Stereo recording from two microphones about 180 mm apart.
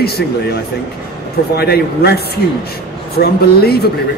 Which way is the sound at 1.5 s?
65° left (ahead or behind).